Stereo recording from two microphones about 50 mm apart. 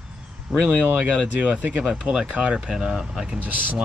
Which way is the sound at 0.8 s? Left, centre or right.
Right.